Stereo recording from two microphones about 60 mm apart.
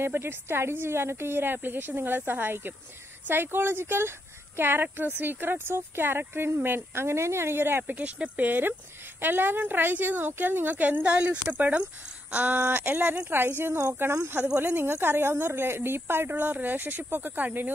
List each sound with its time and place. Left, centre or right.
0.0 s speech: right